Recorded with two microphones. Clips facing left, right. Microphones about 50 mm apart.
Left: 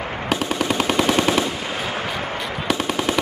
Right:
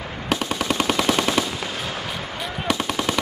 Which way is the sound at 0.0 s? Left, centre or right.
Left.